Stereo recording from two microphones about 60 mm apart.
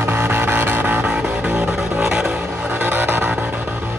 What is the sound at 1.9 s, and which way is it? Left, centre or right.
Vehicle, centre.